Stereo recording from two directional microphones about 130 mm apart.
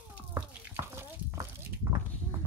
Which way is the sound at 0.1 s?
15° right (ahead or behind).